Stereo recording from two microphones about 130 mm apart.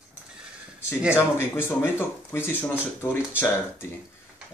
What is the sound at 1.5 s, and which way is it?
Speech, 20° left (ahead or behind).